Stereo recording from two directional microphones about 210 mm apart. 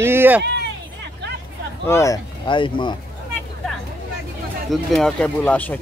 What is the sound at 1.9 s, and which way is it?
Speech, 15° left (ahead or behind).